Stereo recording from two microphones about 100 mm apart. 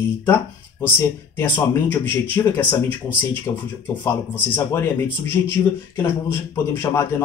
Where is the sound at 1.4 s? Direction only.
20° left (ahead or behind).